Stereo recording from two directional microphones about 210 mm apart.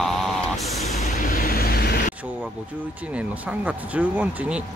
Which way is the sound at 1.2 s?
40° left (ahead or behind).